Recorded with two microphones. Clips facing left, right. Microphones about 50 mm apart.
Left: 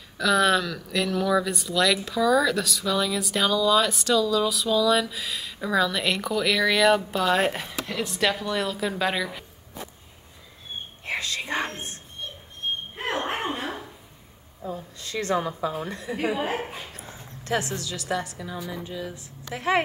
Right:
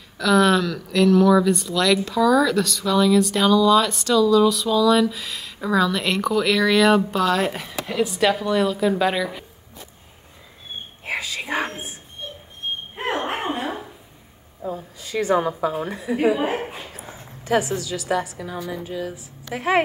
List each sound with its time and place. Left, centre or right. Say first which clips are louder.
0.2 s speech: right 4 dB; centre
11.1 s a sound: right 2 dB; centre
14.6 s a woman's voice: right 4 dB; centre
18.4 s a woman's voice: right 4 dB; right
19.5 s a woman's voice: right 3 dB; centre